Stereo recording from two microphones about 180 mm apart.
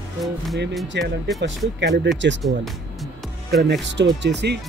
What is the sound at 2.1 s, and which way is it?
Speech, 90° right.